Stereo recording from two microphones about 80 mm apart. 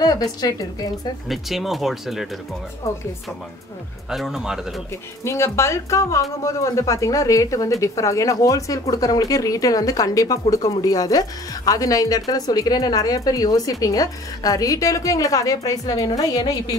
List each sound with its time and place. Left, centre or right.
0.0 s a woman's voice: left
1.3 s speech: centre
4.1 s speech: centre
5.2 s speech: left